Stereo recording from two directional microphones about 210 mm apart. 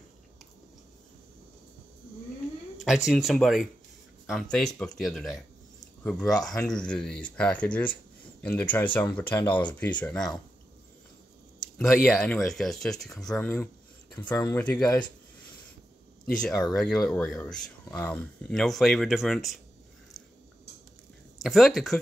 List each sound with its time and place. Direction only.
2.8 s speech: centre (ahead or behind)
11.8 s speech: 5° left (ahead or behind)
16.3 s speech: 5° left (ahead or behind)
21.4 s speech: centre (ahead or behind)